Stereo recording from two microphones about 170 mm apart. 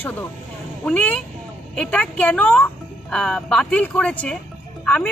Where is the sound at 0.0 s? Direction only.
10° left (ahead or behind).